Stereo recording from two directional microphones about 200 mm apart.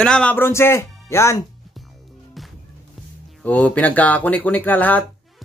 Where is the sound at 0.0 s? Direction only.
5° left (ahead or behind).